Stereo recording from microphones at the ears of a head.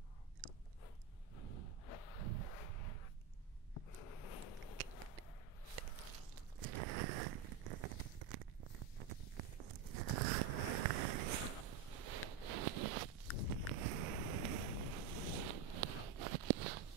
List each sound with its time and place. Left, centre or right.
1.3 s gasp: right
3.7 s a sound: left
5.8 s biting: right
13.5 s boat: right